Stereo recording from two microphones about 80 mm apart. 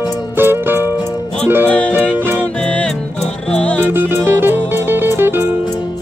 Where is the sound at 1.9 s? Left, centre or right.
Right.